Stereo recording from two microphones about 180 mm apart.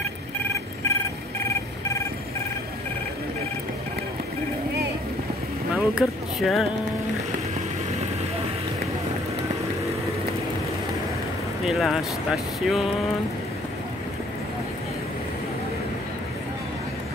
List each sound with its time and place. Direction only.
5.7 s speech: 5° right (ahead or behind)
11.6 s speech: centre (ahead or behind)